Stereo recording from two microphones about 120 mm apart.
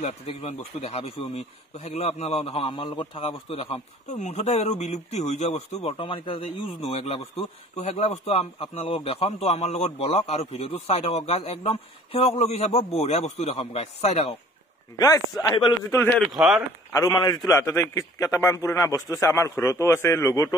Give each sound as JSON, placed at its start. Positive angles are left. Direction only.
{"t": 0.0, "sound": "a man's voice", "side_deg": 60}
{"t": 2.7, "sound": "a man's voice", "side_deg": 45}
{"t": 4.1, "sound": "a man's voice", "side_deg": 75}
{"t": 15.0, "sound": "a man's voice", "side_deg": 25}
{"t": 16.3, "sound": "speech", "side_deg": -5}
{"t": 16.9, "sound": "a man's voice", "side_deg": 30}
{"t": 17.6, "sound": "a man's voice", "side_deg": 20}